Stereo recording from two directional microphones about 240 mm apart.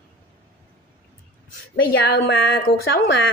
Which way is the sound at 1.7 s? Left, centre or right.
Left.